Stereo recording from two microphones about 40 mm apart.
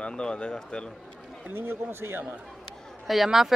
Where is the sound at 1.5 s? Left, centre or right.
Right.